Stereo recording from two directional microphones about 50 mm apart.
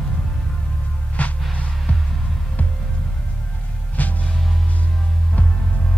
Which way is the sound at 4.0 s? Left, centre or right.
Left.